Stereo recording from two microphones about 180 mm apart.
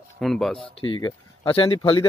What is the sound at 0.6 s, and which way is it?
Speech, 25° left (ahead or behind).